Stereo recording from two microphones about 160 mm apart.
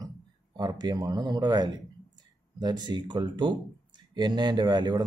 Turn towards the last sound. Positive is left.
turn(degrees=-25)  # may be behind; listen again after turning